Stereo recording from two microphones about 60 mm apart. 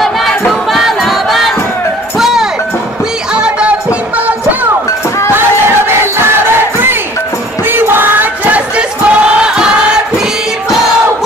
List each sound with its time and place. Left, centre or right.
0.5 s a sound: centre
2.1 s music: centre
3.3 s music: centre
7.6 s music: right
8.5 s crowd: right